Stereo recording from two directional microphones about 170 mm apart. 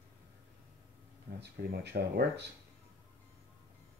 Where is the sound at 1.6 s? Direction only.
70° right (ahead or behind); by 2.4 s 85° right.